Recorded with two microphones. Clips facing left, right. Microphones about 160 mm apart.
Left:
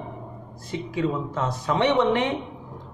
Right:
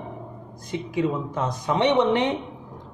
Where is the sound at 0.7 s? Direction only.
15° right (ahead or behind).